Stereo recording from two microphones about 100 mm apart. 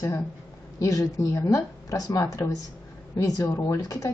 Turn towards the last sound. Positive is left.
turn(degrees=35)  # may be behind; listen again after turning